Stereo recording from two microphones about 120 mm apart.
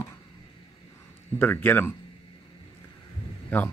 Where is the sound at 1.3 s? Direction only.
20° left (ahead or behind).